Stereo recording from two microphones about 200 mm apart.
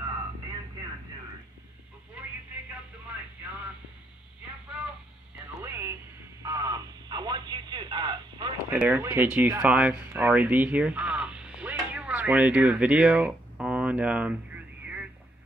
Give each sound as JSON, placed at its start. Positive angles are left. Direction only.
{"t": 5.6, "sound": "music", "side_deg": -10}
{"t": 6.4, "sound": "radio", "side_deg": -15}
{"t": 8.6, "sound": "speech", "side_deg": -10}